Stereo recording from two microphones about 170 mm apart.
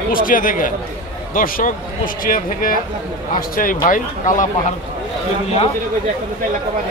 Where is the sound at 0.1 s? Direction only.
55° left (ahead or behind).